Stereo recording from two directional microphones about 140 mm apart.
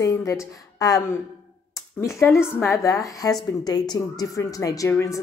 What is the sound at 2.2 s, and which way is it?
A woman's voice, 20° left (ahead or behind).